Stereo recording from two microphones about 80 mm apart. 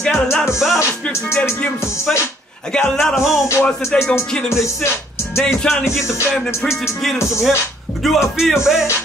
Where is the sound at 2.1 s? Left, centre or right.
Centre.